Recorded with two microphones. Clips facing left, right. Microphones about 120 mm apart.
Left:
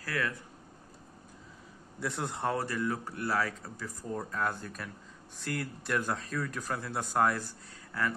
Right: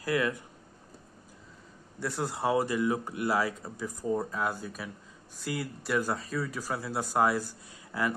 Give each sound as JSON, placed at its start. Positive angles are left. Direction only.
{"t": 0.0, "sound": "speech", "side_deg": -15}
{"t": 2.0, "sound": "speech", "side_deg": 0}